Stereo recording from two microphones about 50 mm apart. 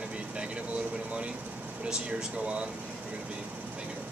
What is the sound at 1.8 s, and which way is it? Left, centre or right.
Speech, centre.